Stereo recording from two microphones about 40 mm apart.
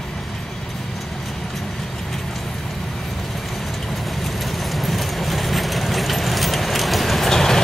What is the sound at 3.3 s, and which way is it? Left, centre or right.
Vehicle, centre.